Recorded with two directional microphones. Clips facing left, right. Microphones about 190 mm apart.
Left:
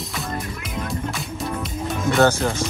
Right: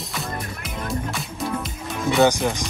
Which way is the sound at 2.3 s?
15° right (ahead or behind).